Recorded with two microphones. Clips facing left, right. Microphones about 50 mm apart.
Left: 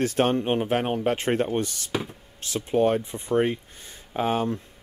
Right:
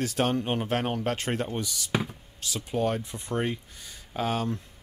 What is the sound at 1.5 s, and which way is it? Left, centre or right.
Speech, left.